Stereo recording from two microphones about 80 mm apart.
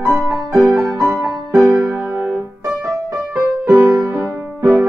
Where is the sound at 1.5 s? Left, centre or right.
Right.